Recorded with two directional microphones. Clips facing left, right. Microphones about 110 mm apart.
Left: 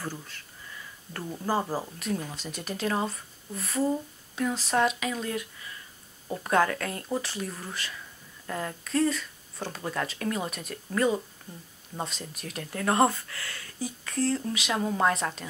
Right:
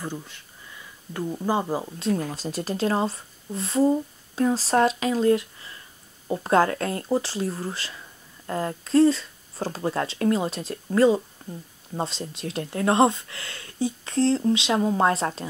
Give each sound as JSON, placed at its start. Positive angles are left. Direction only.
{"t": 0.0, "sound": "speech", "side_deg": -20}
{"t": 2.3, "sound": "speech", "side_deg": -35}